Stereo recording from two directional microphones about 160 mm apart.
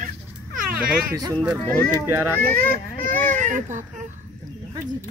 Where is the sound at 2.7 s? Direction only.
60° right (ahead or behind).